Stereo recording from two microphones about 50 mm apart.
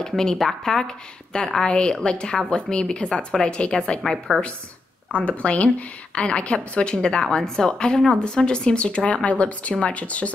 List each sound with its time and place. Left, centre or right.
0.0 s a woman's voice: centre
5.1 s a woman's voice: left